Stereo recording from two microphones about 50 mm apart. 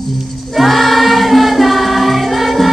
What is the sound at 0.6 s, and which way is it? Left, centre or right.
Music, centre.